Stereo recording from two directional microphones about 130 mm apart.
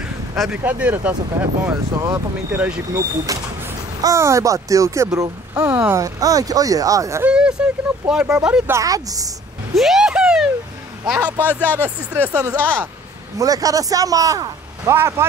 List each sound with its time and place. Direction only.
0.4 s speech: 10° right (ahead or behind); by 7.2 s 25° right (ahead or behind)
7.2 s speech: 5° right (ahead or behind)
8.6 s speech: 25° right (ahead or behind)
9.8 s a sound: 5° right (ahead or behind)
11.1 s speech: 15° right (ahead or behind)